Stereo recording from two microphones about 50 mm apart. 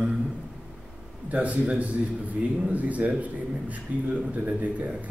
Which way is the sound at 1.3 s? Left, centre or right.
Right.